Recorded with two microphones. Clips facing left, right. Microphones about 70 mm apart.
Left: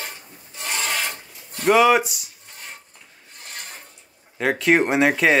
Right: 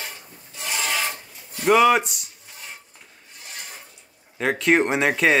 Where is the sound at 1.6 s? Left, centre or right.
Centre.